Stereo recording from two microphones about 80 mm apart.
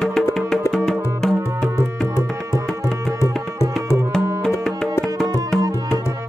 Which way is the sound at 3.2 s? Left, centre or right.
Left.